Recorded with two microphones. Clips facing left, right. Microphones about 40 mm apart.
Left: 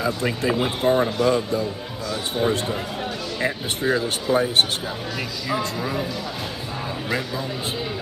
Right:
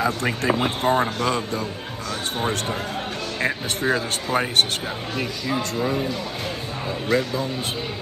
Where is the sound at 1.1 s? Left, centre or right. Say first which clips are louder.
Left 3 dB; right.